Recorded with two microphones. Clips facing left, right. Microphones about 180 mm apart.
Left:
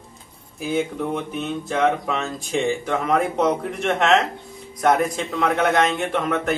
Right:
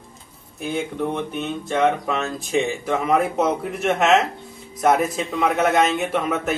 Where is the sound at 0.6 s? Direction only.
Centre (ahead or behind).